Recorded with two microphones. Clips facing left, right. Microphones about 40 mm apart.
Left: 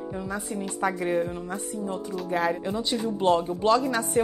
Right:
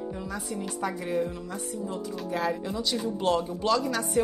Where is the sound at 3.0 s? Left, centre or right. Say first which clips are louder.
Left 4 dB; centre.